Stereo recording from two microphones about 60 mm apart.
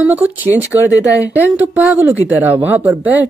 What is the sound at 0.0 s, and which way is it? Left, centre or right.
Speech, right.